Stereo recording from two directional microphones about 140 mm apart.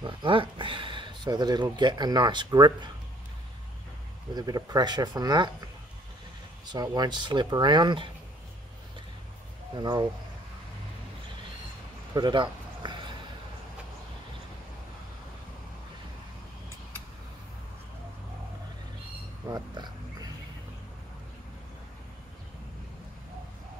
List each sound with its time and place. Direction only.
0.0 s speech: 35° right (ahead or behind)
4.4 s speech: 30° right (ahead or behind)
9.8 s speech: 30° right (ahead or behind)
12.1 s a sound: 30° right (ahead or behind)
19.5 s wild animals: 30° right (ahead or behind)